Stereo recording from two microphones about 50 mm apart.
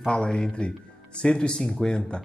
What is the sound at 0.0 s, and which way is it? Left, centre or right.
Speech, centre.